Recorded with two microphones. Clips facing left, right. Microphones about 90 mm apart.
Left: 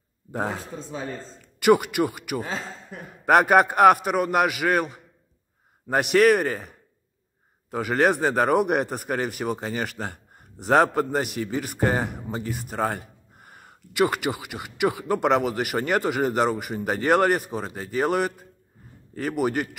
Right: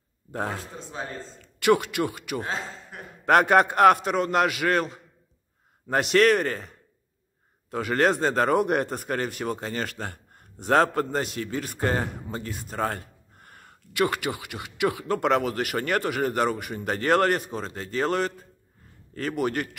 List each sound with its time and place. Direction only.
0.3 s a man's voice: 15° left (ahead or behind)